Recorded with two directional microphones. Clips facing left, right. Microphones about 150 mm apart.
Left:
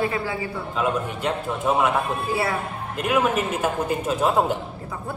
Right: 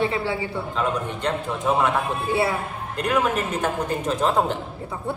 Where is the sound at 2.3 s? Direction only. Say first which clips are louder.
Right 4 dB; 25° right (ahead or behind).